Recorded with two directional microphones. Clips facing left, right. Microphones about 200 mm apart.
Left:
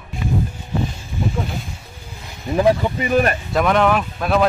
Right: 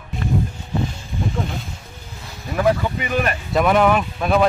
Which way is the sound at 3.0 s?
35° left (ahead or behind).